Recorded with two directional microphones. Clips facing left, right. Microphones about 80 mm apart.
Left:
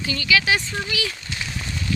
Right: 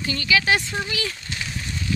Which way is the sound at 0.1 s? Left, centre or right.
Right.